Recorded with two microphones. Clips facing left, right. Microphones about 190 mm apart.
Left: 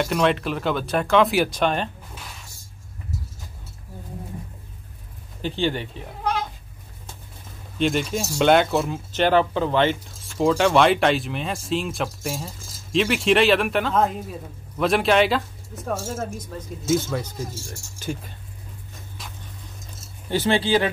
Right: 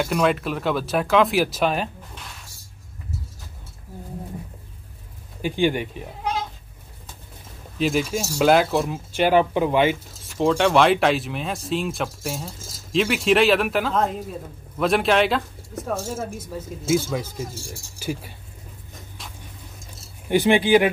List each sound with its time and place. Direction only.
0.0 s speech: 5° right (ahead or behind)
5.4 s speech: 15° right (ahead or behind)
7.8 s speech: 5° right (ahead or behind)
9.1 s speech: 10° right (ahead or behind)
20.2 s speech: 15° right (ahead or behind)